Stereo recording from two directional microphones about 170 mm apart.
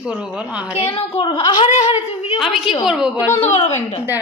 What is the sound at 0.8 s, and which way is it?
Speech, 35° left (ahead or behind).